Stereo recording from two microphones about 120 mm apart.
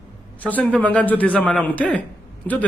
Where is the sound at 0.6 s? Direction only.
10° left (ahead or behind).